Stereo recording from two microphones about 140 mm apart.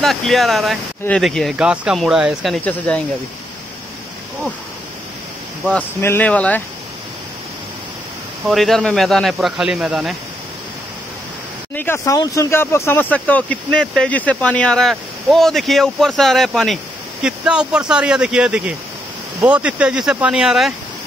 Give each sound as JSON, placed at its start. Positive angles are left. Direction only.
{"t": 0.0, "sound": "speech", "side_deg": 0}
{"t": 5.6, "sound": "speech", "side_deg": 5}
{"t": 8.5, "sound": "speech", "side_deg": 0}
{"t": 11.7, "sound": "speech", "side_deg": 15}